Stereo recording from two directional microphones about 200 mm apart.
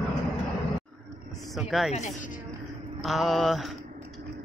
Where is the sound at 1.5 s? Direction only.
Centre (ahead or behind).